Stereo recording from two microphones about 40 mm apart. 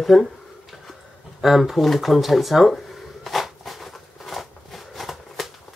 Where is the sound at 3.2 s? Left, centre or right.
Centre.